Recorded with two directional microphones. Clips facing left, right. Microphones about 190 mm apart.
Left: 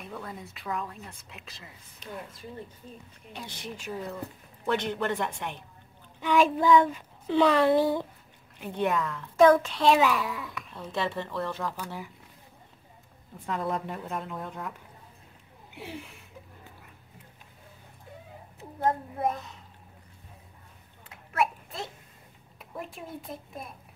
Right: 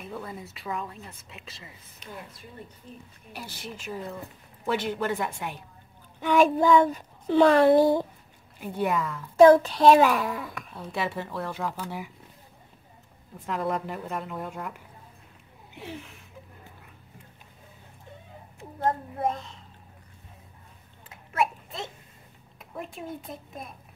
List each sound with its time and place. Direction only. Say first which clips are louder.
0.0 s speech: right 2 dB; 5° right (ahead or behind)
3.3 s speech: even; 5° right (ahead or behind)
6.2 s speech: right 2 dB; 50° right (ahead or behind)
8.5 s speech: right 1 dB; 5° right (ahead or behind)
9.4 s speech: right 4 dB; 35° right (ahead or behind)
10.7 s speech: even; 10° right (ahead or behind)
13.5 s speech: right 2 dB; centre (ahead or behind)
15.8 s a sound: right 1 dB; 10° left (ahead or behind)
21.1 s a sound: right 1 dB; centre (ahead or behind)
22.8 s speech: right 2 dB; centre (ahead or behind)